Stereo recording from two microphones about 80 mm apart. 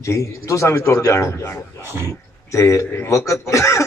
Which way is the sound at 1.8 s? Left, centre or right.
Right.